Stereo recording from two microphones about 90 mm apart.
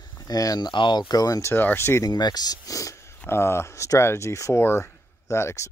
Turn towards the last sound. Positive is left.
turn(degrees=30)  # may be behind; listen again after turning